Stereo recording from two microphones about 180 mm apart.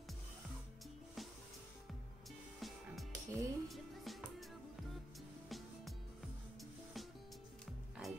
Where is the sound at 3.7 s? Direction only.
Centre (ahead or behind).